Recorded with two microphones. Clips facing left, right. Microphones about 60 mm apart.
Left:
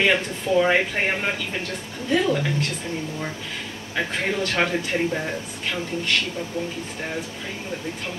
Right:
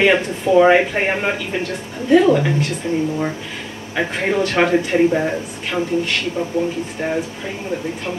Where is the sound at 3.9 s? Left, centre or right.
Right.